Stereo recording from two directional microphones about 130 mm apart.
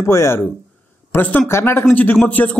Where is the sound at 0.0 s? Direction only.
20° left (ahead or behind).